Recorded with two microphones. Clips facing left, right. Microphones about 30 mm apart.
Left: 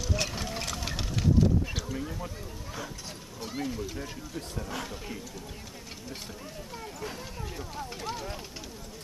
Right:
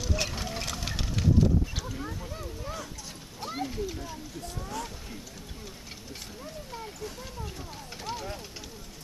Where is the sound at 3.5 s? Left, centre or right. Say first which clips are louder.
Right 1 dB; centre.